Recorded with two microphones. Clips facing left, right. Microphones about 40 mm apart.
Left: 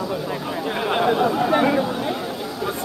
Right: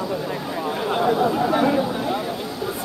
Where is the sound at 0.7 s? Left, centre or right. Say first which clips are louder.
Left 1 dB; left.